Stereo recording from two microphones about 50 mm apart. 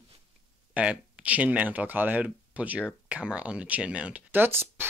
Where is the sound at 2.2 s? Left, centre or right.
Right.